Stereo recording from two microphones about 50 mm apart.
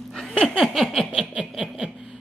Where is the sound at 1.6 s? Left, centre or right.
Centre.